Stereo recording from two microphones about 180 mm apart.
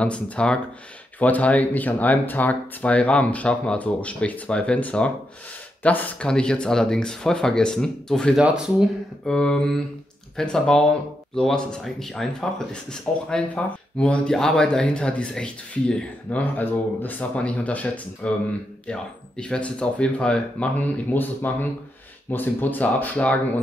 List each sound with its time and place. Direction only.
0.0 s speech: 5° left (ahead or behind)